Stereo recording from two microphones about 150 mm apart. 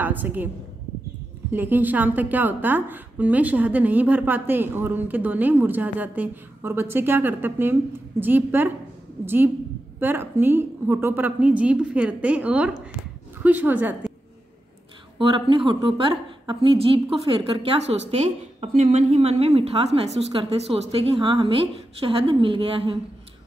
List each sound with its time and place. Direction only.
0.0 s a woman's voice: 10° right (ahead or behind)
1.5 s a woman's voice: 15° right (ahead or behind)
15.1 s a woman's voice: 35° right (ahead or behind)